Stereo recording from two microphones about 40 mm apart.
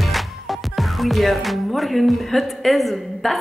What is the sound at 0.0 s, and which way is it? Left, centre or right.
Music, centre.